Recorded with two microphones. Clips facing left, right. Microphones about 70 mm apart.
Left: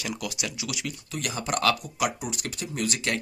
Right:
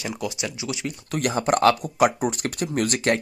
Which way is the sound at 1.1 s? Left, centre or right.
Right.